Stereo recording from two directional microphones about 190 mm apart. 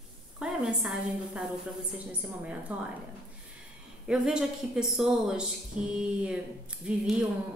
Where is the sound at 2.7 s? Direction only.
10° right (ahead or behind).